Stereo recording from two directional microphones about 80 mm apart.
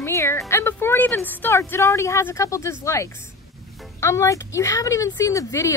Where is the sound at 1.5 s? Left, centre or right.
Left.